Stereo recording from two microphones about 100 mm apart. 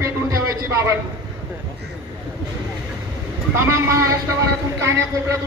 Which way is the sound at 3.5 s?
25° right (ahead or behind).